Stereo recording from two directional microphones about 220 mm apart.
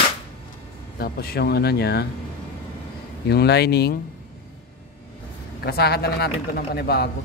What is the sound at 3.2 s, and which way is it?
Speech, 50° left (ahead or behind).